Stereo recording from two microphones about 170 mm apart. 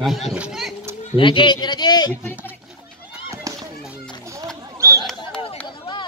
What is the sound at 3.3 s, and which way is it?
Fireworks, 20° right (ahead or behind).